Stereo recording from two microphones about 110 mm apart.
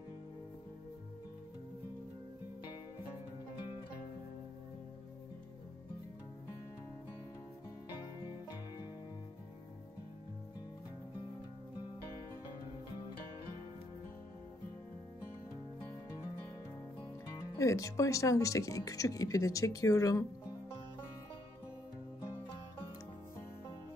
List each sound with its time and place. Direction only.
17.6 s speech: 30° left (ahead or behind)